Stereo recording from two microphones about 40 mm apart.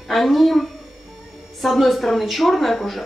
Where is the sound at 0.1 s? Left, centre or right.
Centre.